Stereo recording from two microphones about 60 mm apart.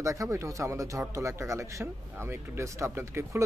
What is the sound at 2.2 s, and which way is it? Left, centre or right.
Speech, right.